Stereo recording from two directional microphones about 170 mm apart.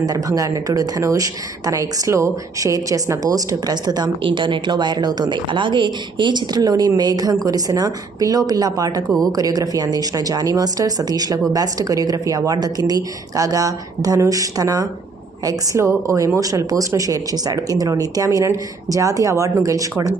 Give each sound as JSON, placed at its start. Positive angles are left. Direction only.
{"t": 0.0, "sound": "a woman's voice", "side_deg": -20}